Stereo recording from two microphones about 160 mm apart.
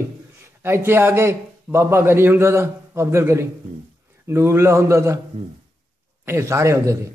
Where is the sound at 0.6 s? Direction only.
15° right (ahead or behind).